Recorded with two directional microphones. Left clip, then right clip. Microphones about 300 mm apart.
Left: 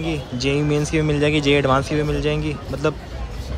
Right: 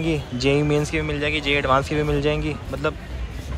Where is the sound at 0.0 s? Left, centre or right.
Centre.